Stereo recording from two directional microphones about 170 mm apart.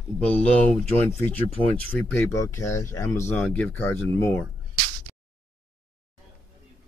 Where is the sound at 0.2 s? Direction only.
5° left (ahead or behind).